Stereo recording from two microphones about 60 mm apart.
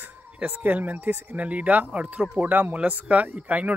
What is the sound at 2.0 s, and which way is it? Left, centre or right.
Speech, centre.